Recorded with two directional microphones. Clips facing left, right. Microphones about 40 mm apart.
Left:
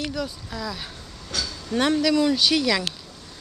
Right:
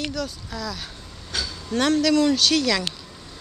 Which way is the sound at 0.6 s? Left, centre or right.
Centre.